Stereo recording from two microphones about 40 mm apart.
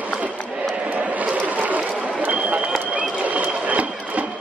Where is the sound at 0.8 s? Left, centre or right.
Right.